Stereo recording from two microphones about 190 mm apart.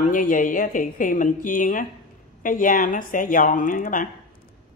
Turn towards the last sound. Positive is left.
turn(degrees=45)  # may be behind; listen again after turning